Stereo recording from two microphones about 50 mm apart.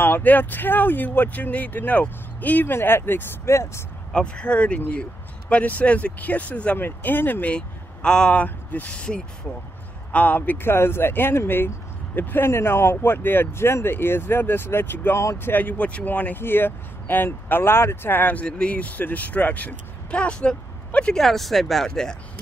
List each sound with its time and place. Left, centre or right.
0.0 s speech: left
2.7 s speech: left
3.4 s speech: left
4.1 s speech: centre
6.8 s speech: left
7.4 s speech: left
10.1 s speech: left
10.7 s speech: left
12.4 s speech: left
16.3 s speech: left
20.2 s speech: centre
21.1 s speech: centre